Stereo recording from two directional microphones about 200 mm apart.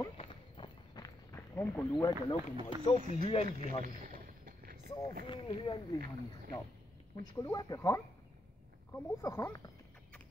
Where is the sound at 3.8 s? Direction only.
45° right (ahead or behind).